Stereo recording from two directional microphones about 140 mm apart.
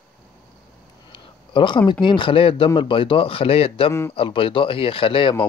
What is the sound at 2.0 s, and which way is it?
Speech, 35° left (ahead or behind).